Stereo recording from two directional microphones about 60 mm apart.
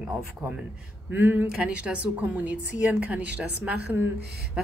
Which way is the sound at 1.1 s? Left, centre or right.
Right.